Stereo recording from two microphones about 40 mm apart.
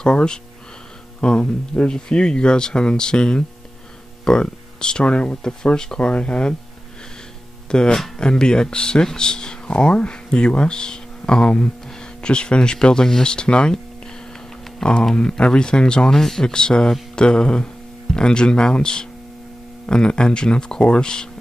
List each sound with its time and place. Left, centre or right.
0.0 s speech: centre
5.9 s speech: left
7.7 s speech: centre
14.8 s speech: left